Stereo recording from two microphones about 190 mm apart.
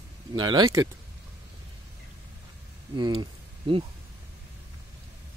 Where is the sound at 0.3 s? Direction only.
25° right (ahead or behind).